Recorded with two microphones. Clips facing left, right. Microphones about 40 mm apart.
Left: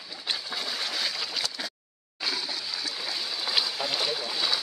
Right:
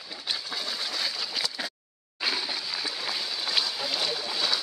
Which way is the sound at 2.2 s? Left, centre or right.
Right.